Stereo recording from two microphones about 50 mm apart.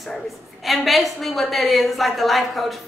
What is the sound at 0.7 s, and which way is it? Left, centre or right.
A woman's voice, centre.